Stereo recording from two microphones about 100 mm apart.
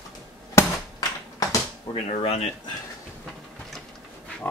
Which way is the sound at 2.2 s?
90° left.